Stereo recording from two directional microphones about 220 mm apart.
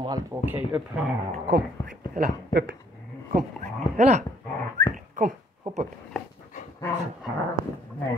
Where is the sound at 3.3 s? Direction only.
30° right (ahead or behind).